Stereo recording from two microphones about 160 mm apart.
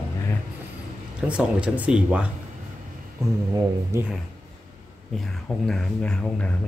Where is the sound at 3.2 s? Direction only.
20° right (ahead or behind).